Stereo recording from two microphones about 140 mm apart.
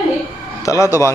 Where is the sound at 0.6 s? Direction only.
25° left (ahead or behind).